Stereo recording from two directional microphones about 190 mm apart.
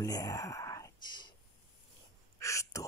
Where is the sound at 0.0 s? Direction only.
20° left (ahead or behind).